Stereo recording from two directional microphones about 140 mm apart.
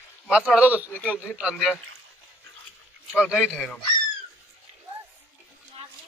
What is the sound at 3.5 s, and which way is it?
Speech, 5° left (ahead or behind).